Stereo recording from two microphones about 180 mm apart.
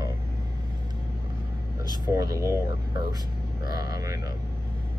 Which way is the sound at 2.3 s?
15° right (ahead or behind).